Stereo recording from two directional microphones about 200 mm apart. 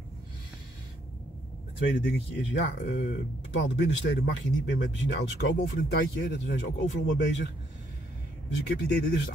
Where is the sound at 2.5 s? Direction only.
60° left (ahead or behind).